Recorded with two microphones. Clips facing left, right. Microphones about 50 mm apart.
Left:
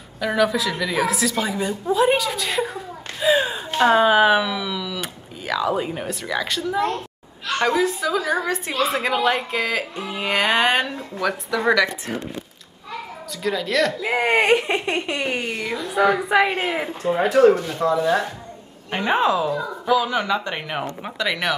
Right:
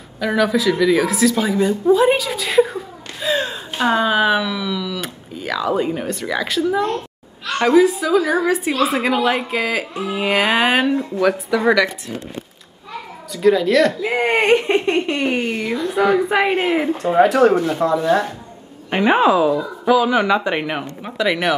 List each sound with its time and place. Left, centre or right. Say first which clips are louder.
0.2 s a woman's voice: right 3 dB; centre
3.2 s gasp: left 2 dB; centre
3.9 s a woman's voice: left 1 dB; centre
13.3 s a woman's voice: right 9 dB; centre
17.2 s speech: right 3 dB; right
17.7 s a woman's voice: right 3 dB; centre
18.9 s speech: right 5 dB; centre